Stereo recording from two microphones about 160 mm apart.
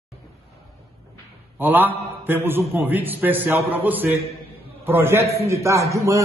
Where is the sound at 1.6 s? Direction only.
10° right (ahead or behind).